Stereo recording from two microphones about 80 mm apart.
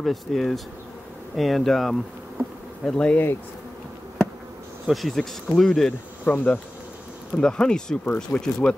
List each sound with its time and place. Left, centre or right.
0.0 s speech: centre
4.8 s speech: centre
6.2 s insect: centre
7.3 s speech: centre